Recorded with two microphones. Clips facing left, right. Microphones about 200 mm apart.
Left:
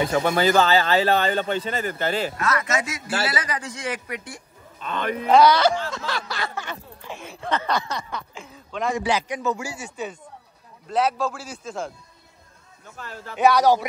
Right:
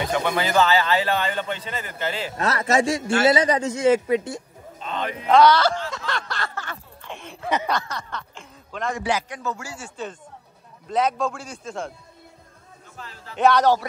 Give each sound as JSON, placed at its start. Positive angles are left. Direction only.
{"t": 0.4, "sound": "speech", "side_deg": 35}
{"t": 2.3, "sound": "a man's voice", "side_deg": -35}
{"t": 4.7, "sound": "a man's voice", "side_deg": 55}
{"t": 5.3, "sound": "speech", "side_deg": 10}
{"t": 5.9, "sound": "a sound", "side_deg": 5}
{"t": 7.1, "sound": "speech", "side_deg": 5}
{"t": 7.4, "sound": "snicker", "side_deg": -10}
{"t": 7.9, "sound": "speech", "side_deg": 10}
{"t": 9.3, "sound": "speech", "side_deg": 15}
{"t": 10.9, "sound": "a man's voice", "side_deg": 5}
{"t": 13.0, "sound": "speech", "side_deg": 60}
{"t": 13.4, "sound": "speech", "side_deg": 10}